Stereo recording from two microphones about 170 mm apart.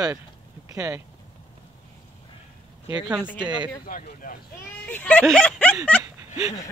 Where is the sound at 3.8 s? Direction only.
55° left (ahead or behind).